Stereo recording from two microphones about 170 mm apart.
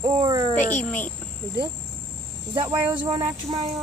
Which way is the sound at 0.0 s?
30° right (ahead or behind).